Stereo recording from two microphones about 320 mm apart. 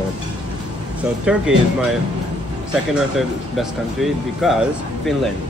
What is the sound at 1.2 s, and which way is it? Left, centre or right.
Speech, centre.